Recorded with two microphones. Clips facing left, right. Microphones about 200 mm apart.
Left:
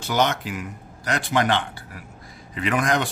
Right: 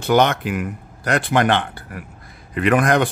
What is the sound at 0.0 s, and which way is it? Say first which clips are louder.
Speech: right 6 dB; 55° right (ahead or behind).